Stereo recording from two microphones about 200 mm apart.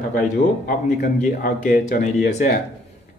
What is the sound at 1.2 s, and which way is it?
Speech, 40° left (ahead or behind).